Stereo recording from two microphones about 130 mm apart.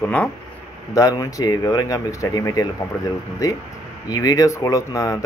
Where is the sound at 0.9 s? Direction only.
25° left (ahead or behind).